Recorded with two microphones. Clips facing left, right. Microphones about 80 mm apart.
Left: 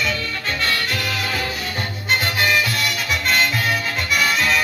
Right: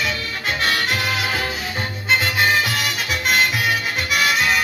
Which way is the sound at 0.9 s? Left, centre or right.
Right.